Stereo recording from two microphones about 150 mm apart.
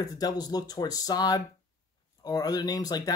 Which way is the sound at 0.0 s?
25° left (ahead or behind).